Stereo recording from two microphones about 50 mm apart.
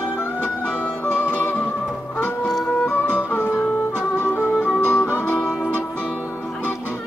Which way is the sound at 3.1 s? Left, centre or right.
Left.